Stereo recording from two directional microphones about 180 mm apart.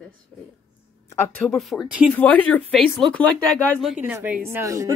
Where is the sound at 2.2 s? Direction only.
10° left (ahead or behind); by 4.9 s 15° right (ahead or behind).